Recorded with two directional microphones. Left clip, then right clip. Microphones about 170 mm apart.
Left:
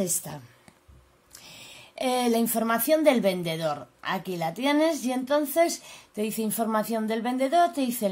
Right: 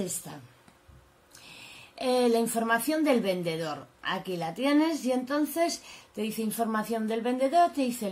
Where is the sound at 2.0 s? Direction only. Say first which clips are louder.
Even; 50° left (ahead or behind).